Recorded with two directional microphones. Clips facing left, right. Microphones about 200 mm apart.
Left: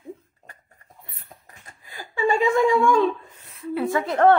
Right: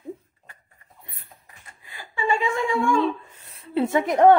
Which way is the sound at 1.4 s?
40° left (ahead or behind).